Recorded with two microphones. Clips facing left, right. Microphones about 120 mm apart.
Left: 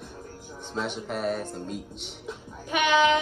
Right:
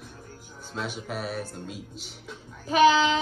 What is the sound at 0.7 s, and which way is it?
Speech, 5° right (ahead or behind).